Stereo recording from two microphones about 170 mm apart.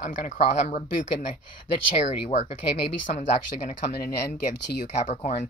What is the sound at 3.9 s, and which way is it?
Speech, 70° left (ahead or behind).